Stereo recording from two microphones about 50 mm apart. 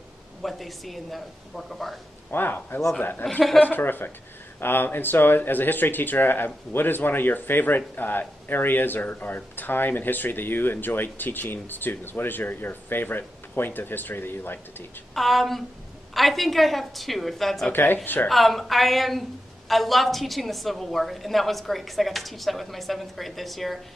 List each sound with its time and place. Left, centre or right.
0.4 s a woman's voice: centre
2.3 s speech: left
15.1 s a woman's voice: centre
18.0 s speech: left
18.3 s a woman's voice: centre